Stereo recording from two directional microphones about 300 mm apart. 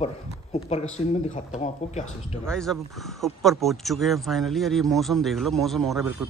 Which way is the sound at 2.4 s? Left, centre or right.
Centre.